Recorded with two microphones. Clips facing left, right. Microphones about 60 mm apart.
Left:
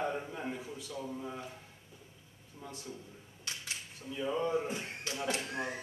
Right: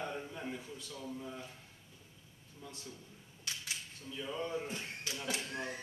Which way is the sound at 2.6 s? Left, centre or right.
Left.